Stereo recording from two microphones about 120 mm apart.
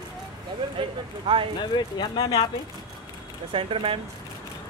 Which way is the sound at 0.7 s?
45° right (ahead or behind).